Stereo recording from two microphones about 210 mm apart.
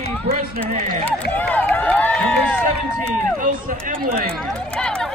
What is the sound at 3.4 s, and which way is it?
Speech, 40° right (ahead or behind).